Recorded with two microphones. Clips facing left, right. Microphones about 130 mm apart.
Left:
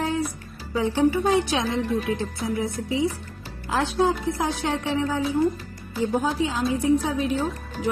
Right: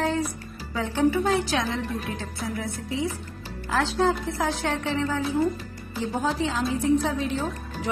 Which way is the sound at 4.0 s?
15° left (ahead or behind).